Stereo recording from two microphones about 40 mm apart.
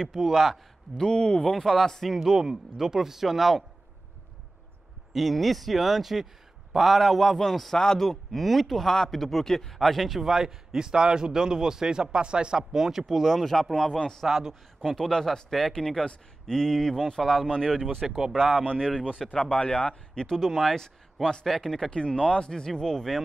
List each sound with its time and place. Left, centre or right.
0.1 s speech: centre
0.9 s speech: left
1.4 s speech: centre
2.1 s a man's voice: centre
5.1 s speech: centre
7.7 s a man's voice: centre
14.5 s speech: centre
18.7 s speech: left
21.9 s speech: left